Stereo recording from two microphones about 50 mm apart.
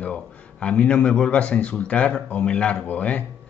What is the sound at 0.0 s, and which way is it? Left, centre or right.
Speech, left.